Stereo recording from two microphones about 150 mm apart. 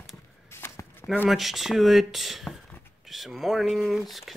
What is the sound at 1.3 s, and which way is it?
Speech, centre (ahead or behind).